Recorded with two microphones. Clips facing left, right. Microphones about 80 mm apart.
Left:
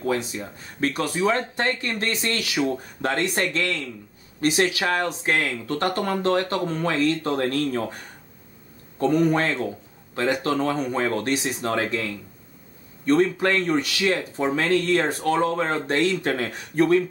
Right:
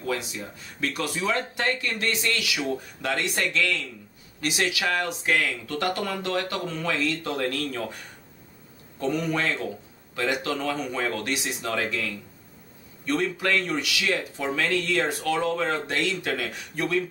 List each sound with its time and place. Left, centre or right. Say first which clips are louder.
0.0 s speech: left 4 dB; left
9.0 s speech: left 6 dB; left